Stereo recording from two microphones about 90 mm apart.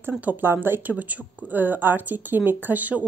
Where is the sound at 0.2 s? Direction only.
20° right (ahead or behind).